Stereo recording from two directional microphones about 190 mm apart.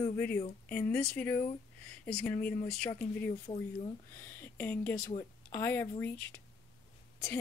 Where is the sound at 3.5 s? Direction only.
25° left (ahead or behind).